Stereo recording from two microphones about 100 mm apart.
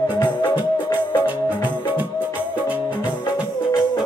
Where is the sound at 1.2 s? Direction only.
20° right (ahead or behind).